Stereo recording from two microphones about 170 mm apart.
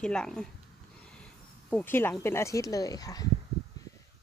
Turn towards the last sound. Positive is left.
turn(degrees=20)  # may be behind; listen again after turning